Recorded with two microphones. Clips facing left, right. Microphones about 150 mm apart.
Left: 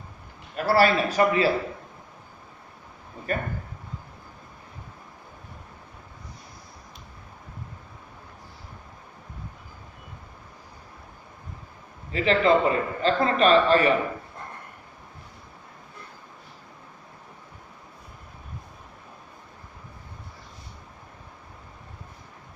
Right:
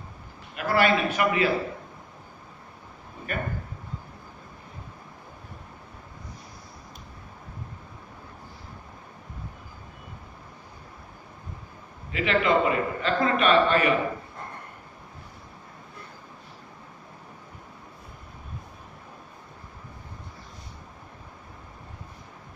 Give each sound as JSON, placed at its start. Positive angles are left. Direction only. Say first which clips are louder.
{"t": 0.6, "sound": "a man's voice", "louder": "left 2 dB", "side_deg": 35}
{"t": 3.3, "sound": "a man's voice", "louder": "left 3 dB", "side_deg": 35}
{"t": 12.1, "sound": "a man's voice", "louder": "left 3 dB", "side_deg": 35}